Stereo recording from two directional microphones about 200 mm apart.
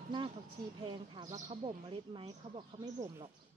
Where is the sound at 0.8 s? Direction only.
25° right (ahead or behind).